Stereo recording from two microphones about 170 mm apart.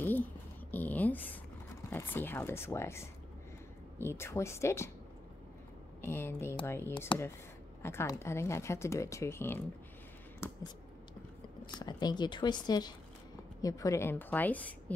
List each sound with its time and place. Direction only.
0.7 s speech: 10° left (ahead or behind)
5.9 s speech: 15° left (ahead or behind)
7.1 s speech: 30° left (ahead or behind)
7.8 s speech: 15° left (ahead or behind)
11.8 s speech: 25° left (ahead or behind); by 15.0 s 10° left (ahead or behind)